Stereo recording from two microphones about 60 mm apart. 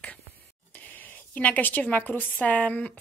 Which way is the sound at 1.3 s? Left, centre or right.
Left.